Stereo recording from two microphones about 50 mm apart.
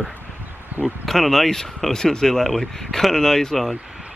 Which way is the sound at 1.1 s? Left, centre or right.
Centre.